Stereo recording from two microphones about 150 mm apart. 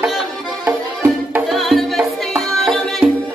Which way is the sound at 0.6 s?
10° right (ahead or behind).